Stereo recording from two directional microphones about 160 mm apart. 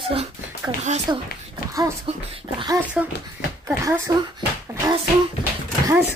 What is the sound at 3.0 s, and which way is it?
Speech, 5° right (ahead or behind).